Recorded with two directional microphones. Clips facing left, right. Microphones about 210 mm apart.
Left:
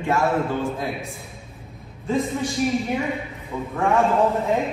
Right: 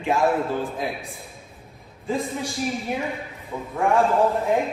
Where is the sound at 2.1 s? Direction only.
Centre (ahead or behind).